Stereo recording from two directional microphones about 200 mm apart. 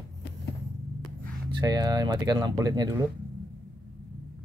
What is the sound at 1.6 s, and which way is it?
Speech, 20° right (ahead or behind).